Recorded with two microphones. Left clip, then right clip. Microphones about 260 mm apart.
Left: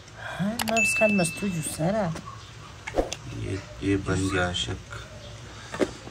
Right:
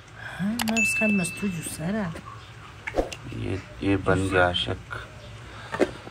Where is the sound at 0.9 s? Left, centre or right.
Left.